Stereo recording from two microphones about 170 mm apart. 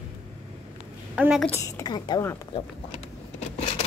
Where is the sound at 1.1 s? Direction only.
10° right (ahead or behind).